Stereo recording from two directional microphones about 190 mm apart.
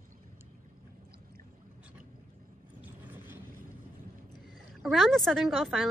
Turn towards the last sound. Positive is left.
turn(degrees=0)  # may be behind; listen again after turning